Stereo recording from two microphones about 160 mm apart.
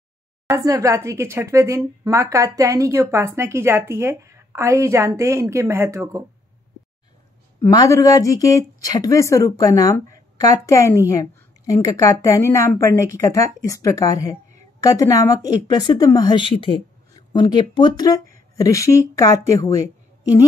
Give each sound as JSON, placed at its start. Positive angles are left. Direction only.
{"t": 0.5, "sound": "speech", "side_deg": -20}
{"t": 7.6, "sound": "speech", "side_deg": 20}